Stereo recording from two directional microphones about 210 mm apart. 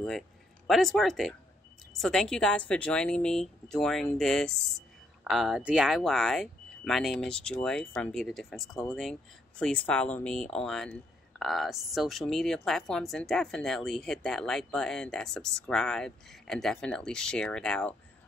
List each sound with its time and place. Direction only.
0.7 s speech: centre (ahead or behind)